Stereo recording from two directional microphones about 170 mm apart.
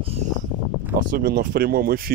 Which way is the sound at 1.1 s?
60° right (ahead or behind).